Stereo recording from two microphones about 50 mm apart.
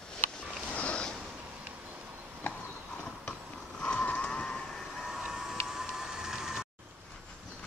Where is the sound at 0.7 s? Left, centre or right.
Left.